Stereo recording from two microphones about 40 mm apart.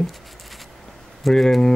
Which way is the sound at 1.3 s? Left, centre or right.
Centre.